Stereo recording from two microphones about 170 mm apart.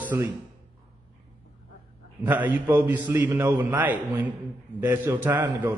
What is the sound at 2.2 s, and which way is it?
A man's voice, 10° right (ahead or behind).